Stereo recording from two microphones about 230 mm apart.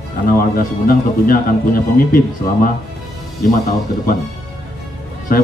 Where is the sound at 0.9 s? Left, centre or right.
Left.